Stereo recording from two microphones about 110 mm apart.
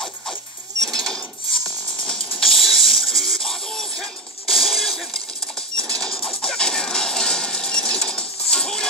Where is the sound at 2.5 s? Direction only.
55° left (ahead or behind).